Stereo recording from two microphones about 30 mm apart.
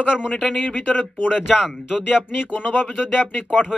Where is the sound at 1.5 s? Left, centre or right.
Centre.